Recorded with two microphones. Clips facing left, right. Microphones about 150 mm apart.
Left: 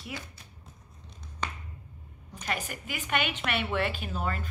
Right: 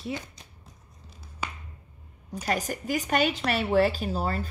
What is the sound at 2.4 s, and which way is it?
A woman's voice, 40° right (ahead or behind).